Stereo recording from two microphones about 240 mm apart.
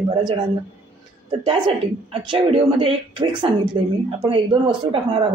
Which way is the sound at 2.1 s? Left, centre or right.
Right.